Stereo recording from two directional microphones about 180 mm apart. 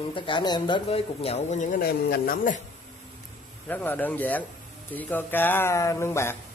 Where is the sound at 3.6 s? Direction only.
10° left (ahead or behind).